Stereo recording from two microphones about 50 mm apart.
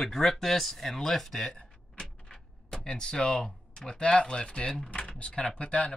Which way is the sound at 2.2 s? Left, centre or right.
Centre.